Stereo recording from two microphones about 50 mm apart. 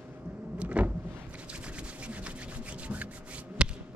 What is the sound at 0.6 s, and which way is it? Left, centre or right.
Vehicle, right.